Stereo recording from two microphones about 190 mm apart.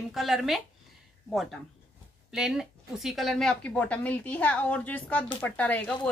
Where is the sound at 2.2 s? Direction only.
5° right (ahead or behind).